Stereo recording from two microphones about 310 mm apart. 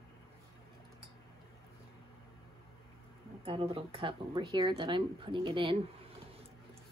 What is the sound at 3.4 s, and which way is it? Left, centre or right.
A woman's voice, centre.